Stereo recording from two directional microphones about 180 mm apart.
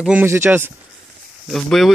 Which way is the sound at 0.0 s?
10° right (ahead or behind).